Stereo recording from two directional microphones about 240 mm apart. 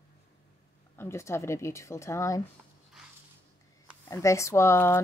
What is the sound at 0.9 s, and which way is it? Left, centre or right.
Speech, centre.